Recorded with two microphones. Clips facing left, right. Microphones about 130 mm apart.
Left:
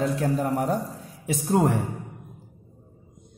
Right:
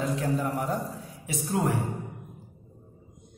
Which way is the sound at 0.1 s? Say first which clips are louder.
Left 3 dB; 45° left (ahead or behind).